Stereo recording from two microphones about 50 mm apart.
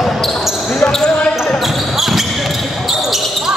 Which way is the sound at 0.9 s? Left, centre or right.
Centre.